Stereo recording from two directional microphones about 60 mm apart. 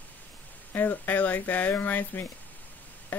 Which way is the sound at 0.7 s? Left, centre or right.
Left.